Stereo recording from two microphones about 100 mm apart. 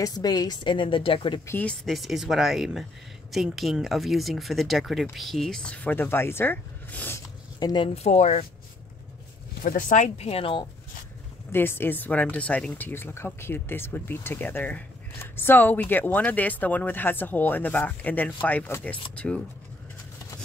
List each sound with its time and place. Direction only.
0.0 s a woman's voice: 40° left (ahead or behind); by 1.4 s 60° left (ahead or behind)
1.5 s speech: 15° left (ahead or behind)
1.9 s speech: centre (ahead or behind); by 7.2 s 15° left (ahead or behind)
7.6 s a woman's voice: 50° left (ahead or behind)
7.9 s speech: 90° left
10.0 s speech: 85° left; by 10.6 s 65° left (ahead or behind)
11.5 s speech: 20° left (ahead or behind)